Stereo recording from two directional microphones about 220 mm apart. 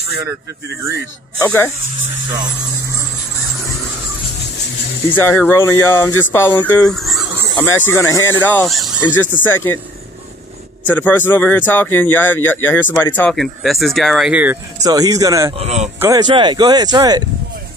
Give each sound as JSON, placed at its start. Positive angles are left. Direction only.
{"t": 1.4, "sound": "speech", "side_deg": 10}
{"t": 2.3, "sound": "speech", "side_deg": -20}
{"t": 5.1, "sound": "speech", "side_deg": 10}
{"t": 7.6, "sound": "speech", "side_deg": 10}
{"t": 11.0, "sound": "speech", "side_deg": 10}
{"t": 15.5, "sound": "speech", "side_deg": -30}
{"t": 16.0, "sound": "speech", "side_deg": -15}